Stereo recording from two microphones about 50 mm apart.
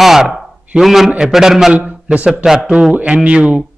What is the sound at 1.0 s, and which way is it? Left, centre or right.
Speech, centre.